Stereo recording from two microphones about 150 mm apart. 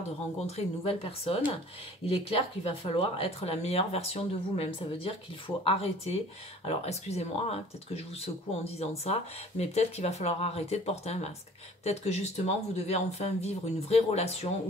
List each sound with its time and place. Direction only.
0.5 s speech: 40° left (ahead or behind)